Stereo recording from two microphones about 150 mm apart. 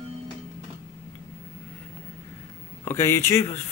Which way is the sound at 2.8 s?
15° left (ahead or behind).